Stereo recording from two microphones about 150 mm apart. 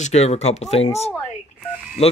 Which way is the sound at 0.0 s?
45° left (ahead or behind).